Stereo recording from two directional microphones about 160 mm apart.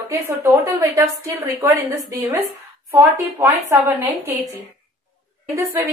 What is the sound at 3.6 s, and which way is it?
Speech, 15° right (ahead or behind).